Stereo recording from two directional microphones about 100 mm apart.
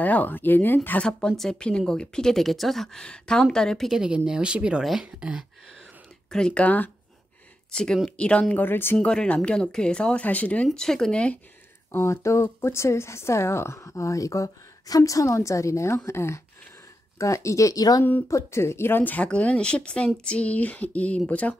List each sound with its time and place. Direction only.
0.0 s speech: 15° left (ahead or behind); by 5.4 s 10° right (ahead or behind)
6.3 s speech: 10° left (ahead or behind)
8.9 s speech: 10° left (ahead or behind)
11.9 s speech: 30° left (ahead or behind)
18.3 s speech: 25° left (ahead or behind)